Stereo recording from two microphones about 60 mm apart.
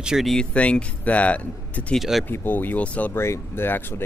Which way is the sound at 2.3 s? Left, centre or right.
Left.